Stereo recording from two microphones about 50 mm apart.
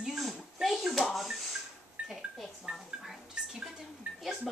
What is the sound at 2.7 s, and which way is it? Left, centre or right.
Speech, right.